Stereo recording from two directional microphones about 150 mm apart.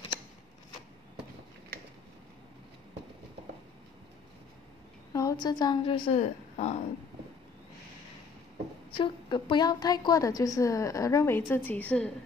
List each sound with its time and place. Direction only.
5.1 s a woman's voice: 25° left (ahead or behind)
6.5 s speech: 50° left (ahead or behind)
8.9 s a woman's voice: 35° left (ahead or behind); by 12.1 s 10° left (ahead or behind)